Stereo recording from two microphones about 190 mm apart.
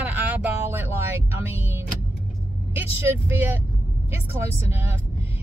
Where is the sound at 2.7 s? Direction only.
10° right (ahead or behind).